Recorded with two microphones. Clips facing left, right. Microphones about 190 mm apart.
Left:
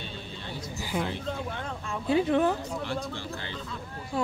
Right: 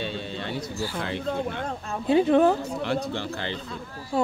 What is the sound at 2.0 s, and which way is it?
Speech, 30° right (ahead or behind).